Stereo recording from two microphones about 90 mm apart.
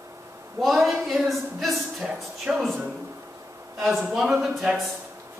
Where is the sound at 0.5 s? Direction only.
Centre (ahead or behind).